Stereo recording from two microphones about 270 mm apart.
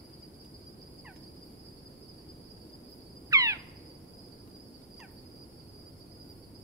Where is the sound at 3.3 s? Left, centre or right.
Centre.